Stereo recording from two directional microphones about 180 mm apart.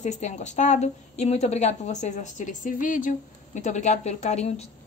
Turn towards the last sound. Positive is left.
turn(degrees=40)  # may be behind; listen again after turning